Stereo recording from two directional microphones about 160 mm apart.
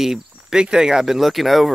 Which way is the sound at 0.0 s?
5° right (ahead or behind).